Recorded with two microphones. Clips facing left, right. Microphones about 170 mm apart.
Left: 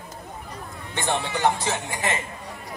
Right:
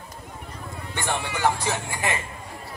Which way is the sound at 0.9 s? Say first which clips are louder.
Left 3 dB; 20° left (ahead or behind).